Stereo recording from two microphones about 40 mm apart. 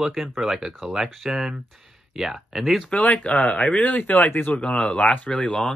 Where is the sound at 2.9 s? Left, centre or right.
Left.